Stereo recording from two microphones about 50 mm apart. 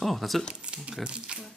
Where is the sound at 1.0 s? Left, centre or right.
Centre.